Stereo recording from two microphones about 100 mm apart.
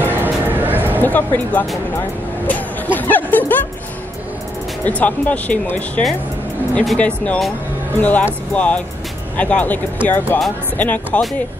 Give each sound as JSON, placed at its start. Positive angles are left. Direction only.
{"t": 0.5, "sound": "a sound", "side_deg": -20}
{"t": 1.0, "sound": "speech", "side_deg": 20}
{"t": 4.8, "sound": "speech", "side_deg": 15}